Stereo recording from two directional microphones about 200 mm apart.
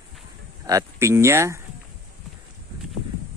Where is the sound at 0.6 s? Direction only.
15° right (ahead or behind).